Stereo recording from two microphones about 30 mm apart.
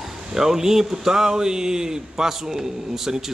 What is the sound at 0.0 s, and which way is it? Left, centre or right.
Speech, centre.